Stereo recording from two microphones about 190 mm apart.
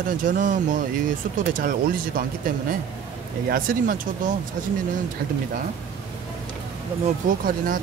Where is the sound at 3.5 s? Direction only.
45° right (ahead or behind).